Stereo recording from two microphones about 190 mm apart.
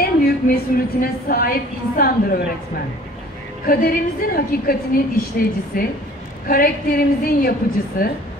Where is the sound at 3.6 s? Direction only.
50° left (ahead or behind).